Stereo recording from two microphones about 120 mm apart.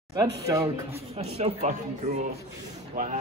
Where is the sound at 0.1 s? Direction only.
30° right (ahead or behind).